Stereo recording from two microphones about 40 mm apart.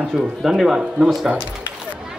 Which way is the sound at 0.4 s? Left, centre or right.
Centre.